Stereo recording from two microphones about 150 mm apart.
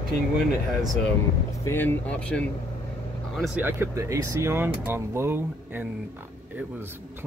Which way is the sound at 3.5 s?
15° right (ahead or behind).